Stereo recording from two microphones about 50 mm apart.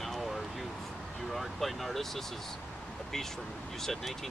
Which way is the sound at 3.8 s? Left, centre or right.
Centre.